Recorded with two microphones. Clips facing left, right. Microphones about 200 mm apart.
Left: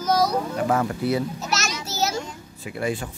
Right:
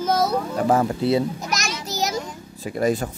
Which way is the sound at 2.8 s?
40° right (ahead or behind).